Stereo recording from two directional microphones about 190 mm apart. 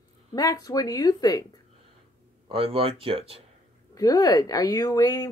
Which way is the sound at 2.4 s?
30° right (ahead or behind).